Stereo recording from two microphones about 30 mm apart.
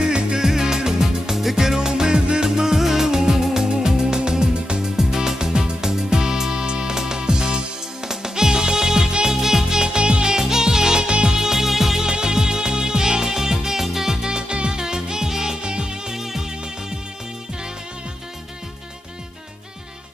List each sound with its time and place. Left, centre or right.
0.0 s music: right
0.5 s music: centre
4.9 s music: centre
9.9 s music: right
11.1 s music: right
11.3 s music: centre
12.0 s music: right
16.2 s music: centre